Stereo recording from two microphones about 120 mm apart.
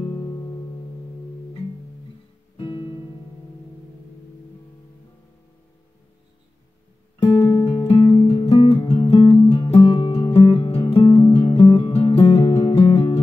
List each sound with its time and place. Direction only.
0.0 s music: 35° left (ahead or behind)
2.5 s guitar: 45° left (ahead or behind)
7.3 s music: 40° left (ahead or behind)